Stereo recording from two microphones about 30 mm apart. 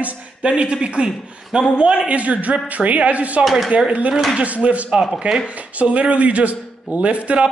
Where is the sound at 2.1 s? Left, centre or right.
Right.